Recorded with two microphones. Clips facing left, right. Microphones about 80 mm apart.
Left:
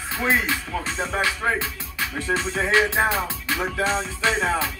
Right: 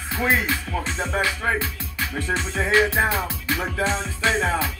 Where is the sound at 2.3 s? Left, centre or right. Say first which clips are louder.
Left 1 dB; left.